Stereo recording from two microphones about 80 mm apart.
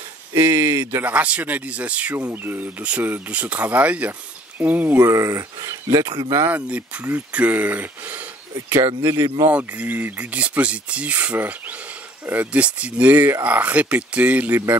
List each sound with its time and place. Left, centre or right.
0.3 s speech: right
1.0 s speech: centre
5.0 s speech: right
6.5 s speech: centre
8.8 s speech: right
9.5 s speech: right